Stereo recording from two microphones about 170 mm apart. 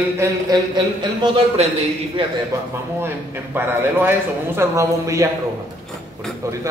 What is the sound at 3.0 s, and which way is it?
A man's voice, 15° right (ahead or behind).